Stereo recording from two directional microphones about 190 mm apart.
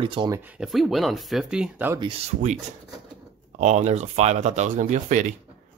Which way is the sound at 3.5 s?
35° right (ahead or behind).